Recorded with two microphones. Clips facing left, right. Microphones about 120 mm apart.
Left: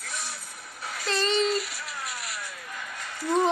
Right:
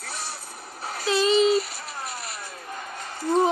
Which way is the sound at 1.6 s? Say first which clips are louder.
Right 2 dB; 35° right (ahead or behind).